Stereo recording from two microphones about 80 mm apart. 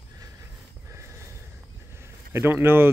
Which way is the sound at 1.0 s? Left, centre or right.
Right.